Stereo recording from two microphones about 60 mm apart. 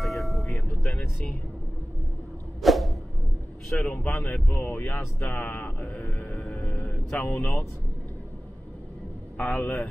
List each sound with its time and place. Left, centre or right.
0.0 s vehicle: centre
2.6 s whoosh: centre
3.7 s speech: left
9.4 s speech: left